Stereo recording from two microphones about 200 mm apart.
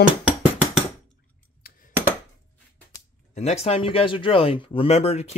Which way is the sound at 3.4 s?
30° left (ahead or behind).